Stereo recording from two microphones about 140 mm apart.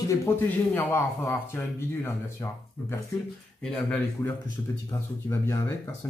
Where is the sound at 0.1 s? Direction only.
15° left (ahead or behind).